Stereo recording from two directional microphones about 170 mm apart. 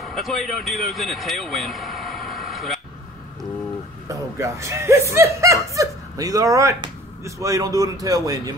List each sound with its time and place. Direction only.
0.0 s speech: centre (ahead or behind)
4.1 s speech: 15° right (ahead or behind)